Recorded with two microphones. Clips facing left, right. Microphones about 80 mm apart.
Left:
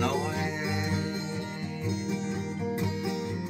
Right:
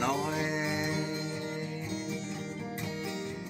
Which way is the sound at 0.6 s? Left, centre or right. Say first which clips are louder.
Left 1 dB; centre.